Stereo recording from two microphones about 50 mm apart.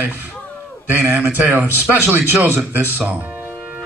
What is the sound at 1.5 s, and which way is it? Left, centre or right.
Speech, right.